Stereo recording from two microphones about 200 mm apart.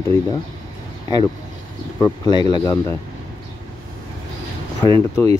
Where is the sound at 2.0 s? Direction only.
20° left (ahead or behind).